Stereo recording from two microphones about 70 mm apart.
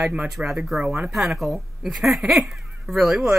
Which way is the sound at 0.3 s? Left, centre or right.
Centre.